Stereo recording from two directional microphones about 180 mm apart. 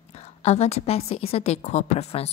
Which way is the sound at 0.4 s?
35° left (ahead or behind).